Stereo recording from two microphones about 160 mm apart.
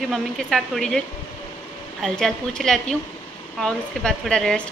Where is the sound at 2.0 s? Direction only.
5° left (ahead or behind).